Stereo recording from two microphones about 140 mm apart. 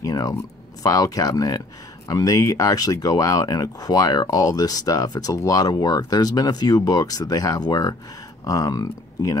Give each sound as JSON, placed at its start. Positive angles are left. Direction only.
{"t": 0.0, "sound": "speech", "side_deg": 25}